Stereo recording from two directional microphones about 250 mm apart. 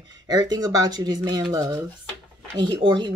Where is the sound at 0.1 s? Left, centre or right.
Centre.